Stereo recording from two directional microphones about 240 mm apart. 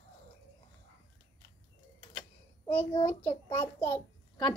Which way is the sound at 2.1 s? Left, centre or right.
Centre.